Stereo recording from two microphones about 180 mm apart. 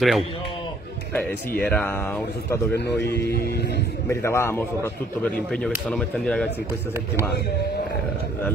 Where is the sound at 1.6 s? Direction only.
10° left (ahead or behind).